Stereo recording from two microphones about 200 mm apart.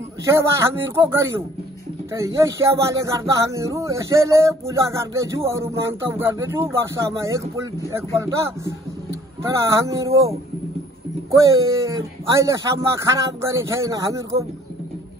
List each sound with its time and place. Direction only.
0.2 s speech: 15° right (ahead or behind)
9.6 s speech: 15° right (ahead or behind)
11.2 s speech: 15° right (ahead or behind)